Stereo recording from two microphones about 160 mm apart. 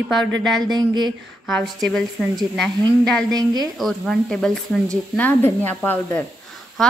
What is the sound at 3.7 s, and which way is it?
A woman's voice, centre (ahead or behind).